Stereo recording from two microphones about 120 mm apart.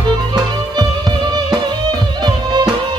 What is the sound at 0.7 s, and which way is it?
Music, 35° right (ahead or behind).